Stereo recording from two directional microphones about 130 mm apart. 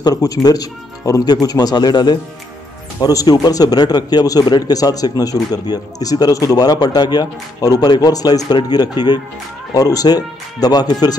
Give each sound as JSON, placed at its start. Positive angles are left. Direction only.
{"t": 0.0, "sound": "speech", "side_deg": 30}